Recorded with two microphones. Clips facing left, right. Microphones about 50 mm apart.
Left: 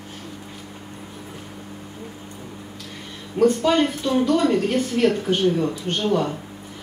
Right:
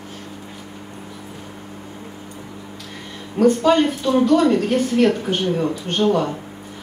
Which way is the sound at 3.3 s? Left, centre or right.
Right.